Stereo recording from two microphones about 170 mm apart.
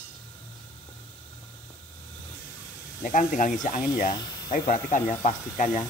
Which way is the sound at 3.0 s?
50° left (ahead or behind).